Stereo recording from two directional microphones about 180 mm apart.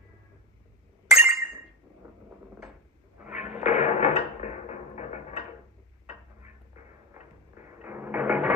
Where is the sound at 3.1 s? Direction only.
10° right (ahead or behind).